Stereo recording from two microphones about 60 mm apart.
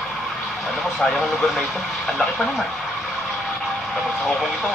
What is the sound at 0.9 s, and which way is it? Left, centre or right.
Speech, centre.